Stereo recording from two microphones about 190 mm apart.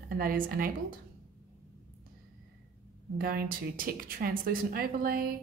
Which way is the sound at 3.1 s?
50° right (ahead or behind).